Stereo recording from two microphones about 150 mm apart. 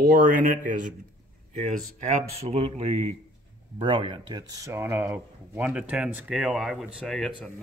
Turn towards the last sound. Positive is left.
turn(degrees=5)  # may be behind; listen again after turning